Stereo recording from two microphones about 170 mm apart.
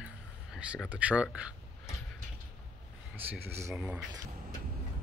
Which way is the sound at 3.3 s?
15° right (ahead or behind).